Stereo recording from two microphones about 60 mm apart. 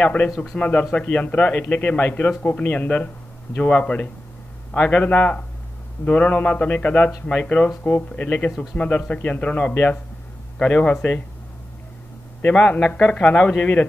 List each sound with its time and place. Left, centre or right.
0.0 s a man's voice: left
12.5 s a man's voice: centre